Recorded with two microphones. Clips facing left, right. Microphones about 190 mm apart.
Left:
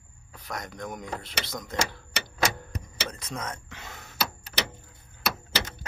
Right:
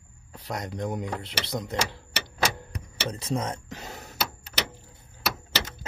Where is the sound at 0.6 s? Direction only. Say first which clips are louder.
Right 6 dB; 30° right (ahead or behind).